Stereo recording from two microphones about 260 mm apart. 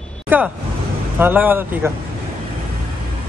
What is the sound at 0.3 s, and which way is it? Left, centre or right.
Speech, centre.